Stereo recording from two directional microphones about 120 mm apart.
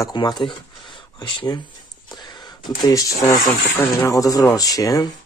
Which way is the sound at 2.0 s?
35° left (ahead or behind).